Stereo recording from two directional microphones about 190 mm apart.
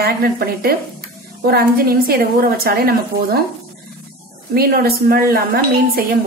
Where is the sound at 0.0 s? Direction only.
55° right (ahead or behind).